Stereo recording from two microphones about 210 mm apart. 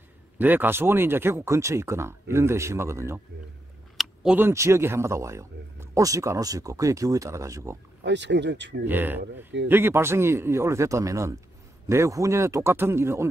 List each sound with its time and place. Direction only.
0.4 s speech: 10° right (ahead or behind)
8.0 s speech: 55° right (ahead or behind)
8.8 s speech: 10° right (ahead or behind)